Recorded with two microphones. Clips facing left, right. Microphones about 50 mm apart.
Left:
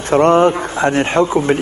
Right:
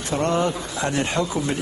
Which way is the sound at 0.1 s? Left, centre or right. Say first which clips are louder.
Left 11 dB; left.